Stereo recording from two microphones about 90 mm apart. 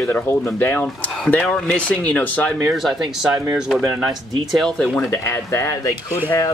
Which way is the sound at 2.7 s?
Centre (ahead or behind).